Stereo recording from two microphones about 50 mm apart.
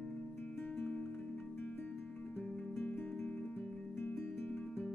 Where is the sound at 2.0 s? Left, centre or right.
Left.